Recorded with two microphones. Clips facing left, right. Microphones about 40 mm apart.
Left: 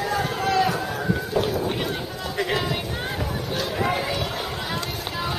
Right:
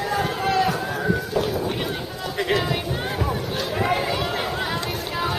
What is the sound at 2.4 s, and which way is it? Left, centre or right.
Run, centre.